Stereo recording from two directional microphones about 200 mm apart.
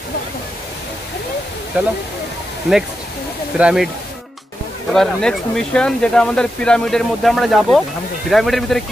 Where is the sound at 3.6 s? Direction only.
5° right (ahead or behind).